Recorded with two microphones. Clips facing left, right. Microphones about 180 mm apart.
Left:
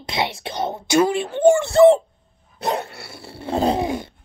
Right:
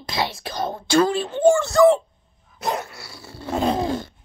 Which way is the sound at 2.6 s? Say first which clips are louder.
Left 2 dB; 30° left (ahead or behind).